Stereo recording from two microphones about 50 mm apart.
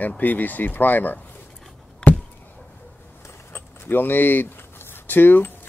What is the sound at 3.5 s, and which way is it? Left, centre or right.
Speech, left.